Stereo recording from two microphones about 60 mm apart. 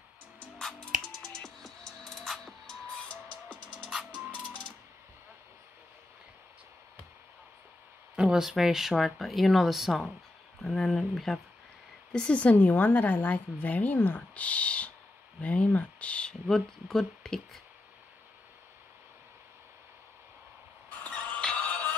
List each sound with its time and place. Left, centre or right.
0.6 s music: centre
4.1 s music: left
8.2 s speech: centre
12.1 s a woman's voice: centre
12.5 s a woman's voice: left
14.3 s a sound: left
15.4 s speech: left
16.4 s speech: centre
21.5 s music: left